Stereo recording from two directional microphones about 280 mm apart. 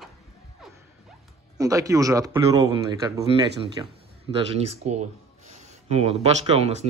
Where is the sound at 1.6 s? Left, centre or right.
Centre.